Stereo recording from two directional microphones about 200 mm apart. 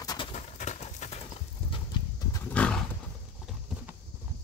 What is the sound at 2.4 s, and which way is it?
Horse, 5° left (ahead or behind).